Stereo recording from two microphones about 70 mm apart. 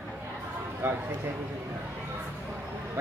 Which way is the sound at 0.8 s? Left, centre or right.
Right.